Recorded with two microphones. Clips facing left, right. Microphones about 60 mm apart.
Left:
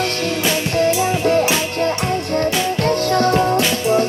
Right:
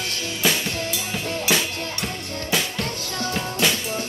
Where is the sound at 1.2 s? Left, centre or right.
Left.